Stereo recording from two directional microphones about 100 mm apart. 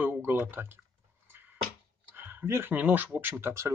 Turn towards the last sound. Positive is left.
turn(degrees=-25)  # may be behind; listen again after turning